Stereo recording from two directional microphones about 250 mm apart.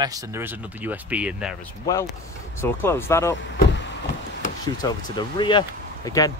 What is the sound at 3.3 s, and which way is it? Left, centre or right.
Vehicle, left.